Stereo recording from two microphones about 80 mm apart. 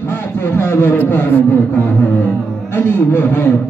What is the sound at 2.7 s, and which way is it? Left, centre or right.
Speech, left.